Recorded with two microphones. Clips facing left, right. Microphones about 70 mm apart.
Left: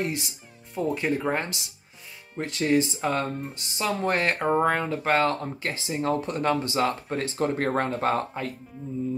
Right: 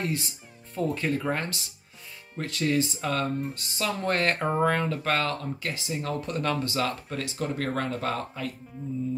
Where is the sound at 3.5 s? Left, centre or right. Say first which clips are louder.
Left 2 dB; centre.